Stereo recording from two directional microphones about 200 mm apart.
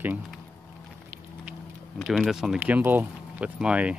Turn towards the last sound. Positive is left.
turn(degrees=-5)  # may be behind; listen again after turning